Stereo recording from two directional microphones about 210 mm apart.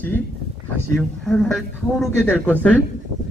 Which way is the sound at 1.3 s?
Centre (ahead or behind).